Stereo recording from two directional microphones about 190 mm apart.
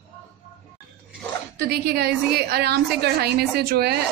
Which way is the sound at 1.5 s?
60° right (ahead or behind).